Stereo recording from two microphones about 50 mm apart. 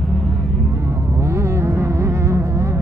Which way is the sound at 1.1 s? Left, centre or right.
Right.